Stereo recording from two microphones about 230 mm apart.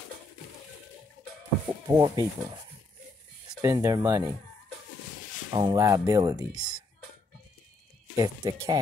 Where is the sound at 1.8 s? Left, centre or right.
Centre.